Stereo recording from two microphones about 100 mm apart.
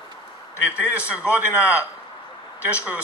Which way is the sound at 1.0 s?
15° right (ahead or behind).